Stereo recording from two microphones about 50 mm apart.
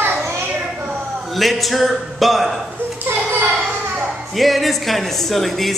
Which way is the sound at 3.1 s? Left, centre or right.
Right.